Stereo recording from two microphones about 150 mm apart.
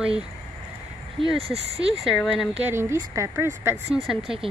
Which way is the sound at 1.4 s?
40° right (ahead or behind).